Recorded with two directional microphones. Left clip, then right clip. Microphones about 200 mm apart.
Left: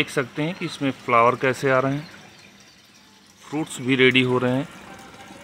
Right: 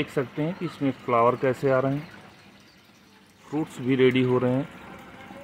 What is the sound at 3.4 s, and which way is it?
Speech, centre (ahead or behind).